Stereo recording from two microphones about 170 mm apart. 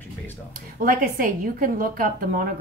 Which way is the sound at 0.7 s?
55° right (ahead or behind).